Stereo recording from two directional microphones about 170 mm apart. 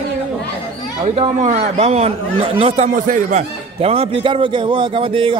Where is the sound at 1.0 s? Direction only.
40° right (ahead or behind).